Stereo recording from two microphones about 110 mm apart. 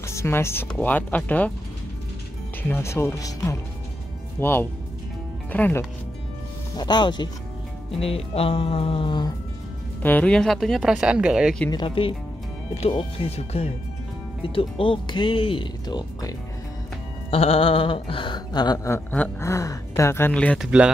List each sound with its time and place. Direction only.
0.0 s speech: 25° left (ahead or behind)
2.7 s speech: 25° left (ahead or behind)
4.4 s speech: 20° left (ahead or behind)
6.8 s speech: 40° left (ahead or behind)
8.0 s speech: 60° left (ahead or behind)
10.0 s speech: 15° left (ahead or behind); by 11.5 s 5° right (ahead or behind)
11.7 s speech: 50° left (ahead or behind)
17.3 s speech: 60° left (ahead or behind); by 18.8 s 40° left (ahead or behind)
18.9 s speech: 20° left (ahead or behind)
20.5 s speech: 5° right (ahead or behind)